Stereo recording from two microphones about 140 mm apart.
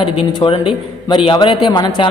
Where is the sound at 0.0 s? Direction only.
40° left (ahead or behind).